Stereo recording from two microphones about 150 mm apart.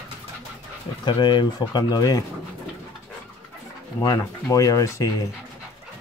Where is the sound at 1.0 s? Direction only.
30° left (ahead or behind).